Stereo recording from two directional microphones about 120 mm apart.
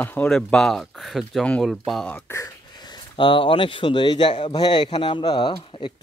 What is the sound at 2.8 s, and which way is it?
A man's voice, 45° left (ahead or behind).